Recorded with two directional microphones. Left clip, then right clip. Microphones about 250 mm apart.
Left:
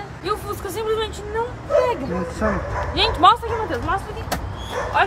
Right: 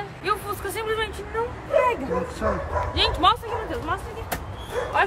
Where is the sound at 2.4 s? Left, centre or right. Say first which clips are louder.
Left 5 dB; centre.